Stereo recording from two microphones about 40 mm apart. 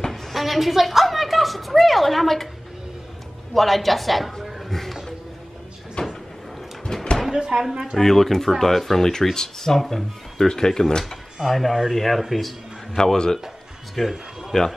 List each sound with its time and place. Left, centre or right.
0.1 s a sound: centre
3.5 s a woman's voice: centre
6.0 s cupboard open or close: left
6.9 s a sound: centre
7.3 s speech: centre
8.0 s speech: centre
11.4 s speech: centre
12.9 s speech: centre
14.0 s speech: centre